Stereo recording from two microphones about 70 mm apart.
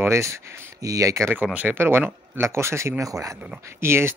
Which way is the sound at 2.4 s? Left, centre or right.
Right.